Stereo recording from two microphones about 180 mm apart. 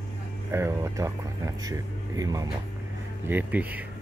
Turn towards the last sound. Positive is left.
turn(degrees=-10)  # may be behind; listen again after turning